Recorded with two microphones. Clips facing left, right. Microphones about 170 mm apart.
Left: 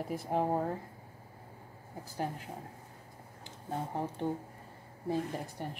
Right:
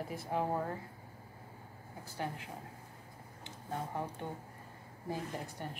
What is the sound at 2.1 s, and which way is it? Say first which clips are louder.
Speech: left 3 dB; 40° left (ahead or behind).